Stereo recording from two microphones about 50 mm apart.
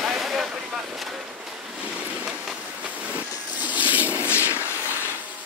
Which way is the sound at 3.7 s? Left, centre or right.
Right.